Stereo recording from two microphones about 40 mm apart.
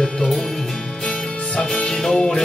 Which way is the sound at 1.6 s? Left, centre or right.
Centre.